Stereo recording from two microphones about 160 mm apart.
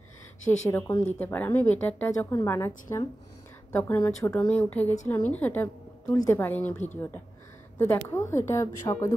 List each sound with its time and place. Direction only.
0.7 s a woman's voice: 15° left (ahead or behind)
4.4 s a woman's voice: 10° left (ahead or behind)